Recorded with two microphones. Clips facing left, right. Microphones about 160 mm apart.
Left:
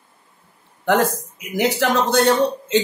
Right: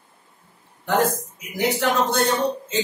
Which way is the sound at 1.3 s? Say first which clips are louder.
Left 3 dB; 90° left.